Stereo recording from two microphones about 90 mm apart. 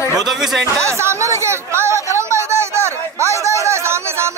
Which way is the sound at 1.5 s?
30° right (ahead or behind).